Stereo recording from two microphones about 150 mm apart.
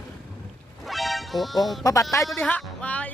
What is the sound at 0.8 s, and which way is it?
Music, centre (ahead or behind).